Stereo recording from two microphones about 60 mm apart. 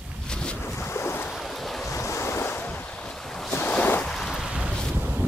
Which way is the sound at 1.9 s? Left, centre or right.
Left.